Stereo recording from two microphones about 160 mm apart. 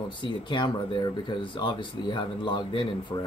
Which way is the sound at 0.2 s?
30° left (ahead or behind).